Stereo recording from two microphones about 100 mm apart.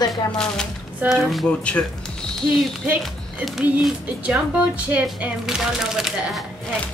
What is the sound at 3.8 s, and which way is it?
Speech, 10° right (ahead or behind).